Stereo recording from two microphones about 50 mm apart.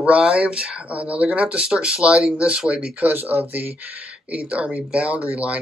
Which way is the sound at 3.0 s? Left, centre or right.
Right.